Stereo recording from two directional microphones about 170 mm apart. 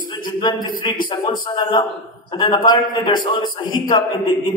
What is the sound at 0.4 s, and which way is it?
Speech, 25° left (ahead or behind).